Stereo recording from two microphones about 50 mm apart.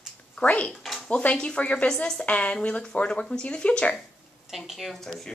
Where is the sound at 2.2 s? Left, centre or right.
Left.